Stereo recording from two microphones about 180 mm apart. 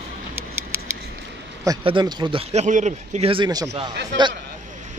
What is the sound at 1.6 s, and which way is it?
A man's voice, 25° right (ahead or behind).